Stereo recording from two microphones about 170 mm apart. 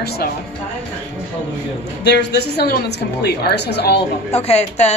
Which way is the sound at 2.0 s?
80° left.